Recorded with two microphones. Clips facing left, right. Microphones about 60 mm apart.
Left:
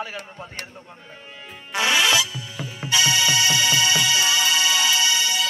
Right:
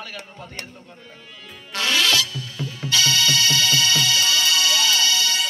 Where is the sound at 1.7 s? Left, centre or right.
Centre.